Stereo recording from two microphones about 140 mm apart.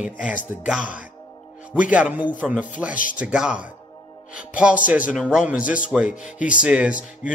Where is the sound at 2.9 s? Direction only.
70° left (ahead or behind).